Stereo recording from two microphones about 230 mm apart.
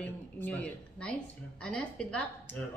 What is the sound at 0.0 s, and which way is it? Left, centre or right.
A woman's voice, centre.